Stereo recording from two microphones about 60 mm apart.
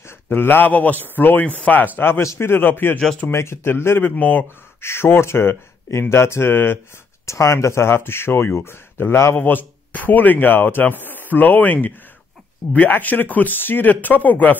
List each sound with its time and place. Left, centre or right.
0.0 s speech: left
2.0 s speech: left
4.0 s speech: left
4.8 s speech: left
7.2 s speech: left
9.5 s speech: left